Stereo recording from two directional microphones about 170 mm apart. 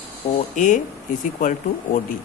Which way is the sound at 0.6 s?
50° left (ahead or behind).